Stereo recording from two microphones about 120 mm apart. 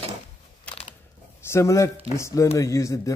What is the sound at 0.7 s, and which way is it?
Crushing, 10° left (ahead or behind).